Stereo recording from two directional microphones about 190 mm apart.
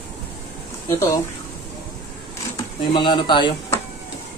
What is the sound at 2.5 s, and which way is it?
Speech, 25° left (ahead or behind).